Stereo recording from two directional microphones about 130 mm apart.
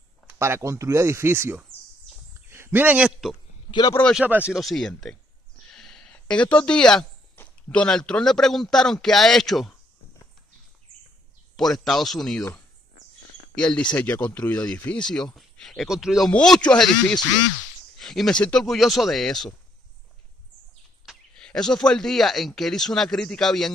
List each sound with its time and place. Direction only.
0.3 s a man's voice: 20° right (ahead or behind)
4.6 s a man's voice: centre (ahead or behind)
5.7 s a sound: 5° left (ahead or behind)
7.3 s a man's voice: 10° left (ahead or behind)
11.5 s a man's voice: 5° left (ahead or behind)
13.6 s a man's voice: 5° left (ahead or behind)
21.0 s a sound: 5° right (ahead or behind)
21.5 s a man's voice: 5° left (ahead or behind)